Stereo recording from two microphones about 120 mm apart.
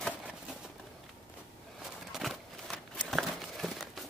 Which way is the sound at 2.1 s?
Centre (ahead or behind).